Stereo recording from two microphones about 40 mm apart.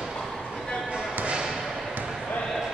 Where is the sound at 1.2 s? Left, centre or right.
Right.